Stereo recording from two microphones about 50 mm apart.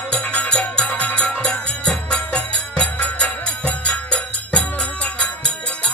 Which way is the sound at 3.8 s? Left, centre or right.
Left.